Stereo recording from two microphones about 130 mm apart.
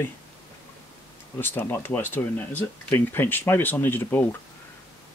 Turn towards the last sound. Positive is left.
turn(degrees=15)  # may be behind; listen again after turning